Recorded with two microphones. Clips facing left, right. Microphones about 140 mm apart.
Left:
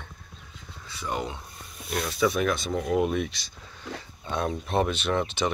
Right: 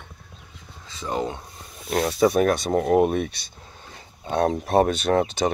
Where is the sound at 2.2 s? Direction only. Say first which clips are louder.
Right 5 dB; 45° right (ahead or behind).